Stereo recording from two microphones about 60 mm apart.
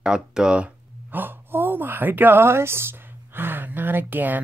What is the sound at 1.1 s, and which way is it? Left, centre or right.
Speech, right.